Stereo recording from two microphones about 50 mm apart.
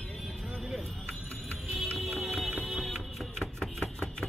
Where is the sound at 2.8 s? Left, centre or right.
Centre.